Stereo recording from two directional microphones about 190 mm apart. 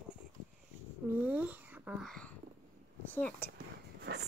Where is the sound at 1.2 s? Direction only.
10° right (ahead or behind).